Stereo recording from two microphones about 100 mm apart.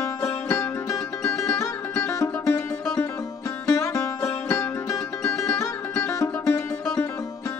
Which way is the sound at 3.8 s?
30° left (ahead or behind).